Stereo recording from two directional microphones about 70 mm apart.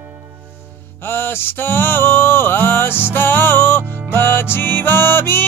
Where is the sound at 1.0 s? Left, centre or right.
Left.